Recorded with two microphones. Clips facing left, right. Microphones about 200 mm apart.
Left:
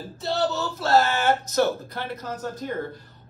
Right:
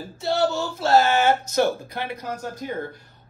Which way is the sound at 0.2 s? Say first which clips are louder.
Right 3 dB; 10° right (ahead or behind).